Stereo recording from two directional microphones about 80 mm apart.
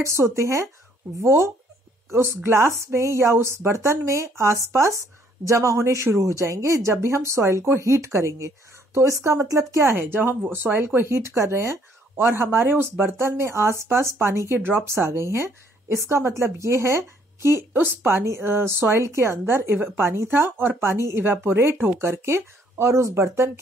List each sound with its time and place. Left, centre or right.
0.0 s speech: right